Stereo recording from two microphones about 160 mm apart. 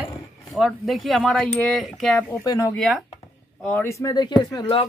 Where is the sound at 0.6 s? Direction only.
Centre (ahead or behind).